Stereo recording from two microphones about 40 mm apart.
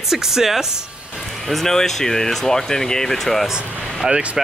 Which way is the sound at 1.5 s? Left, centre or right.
Centre.